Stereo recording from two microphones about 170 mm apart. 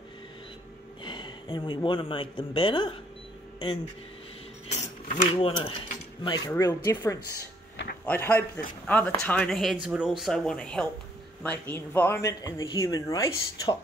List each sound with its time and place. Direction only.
1.0 s speech: 25° left (ahead or behind)
5.0 s a sound: 45° left (ahead or behind)
5.3 s speech: 30° left (ahead or behind)
6.5 s speech: 15° left (ahead or behind)
7.7 s a sound: 90° left
8.0 s speech: 10° left (ahead or behind)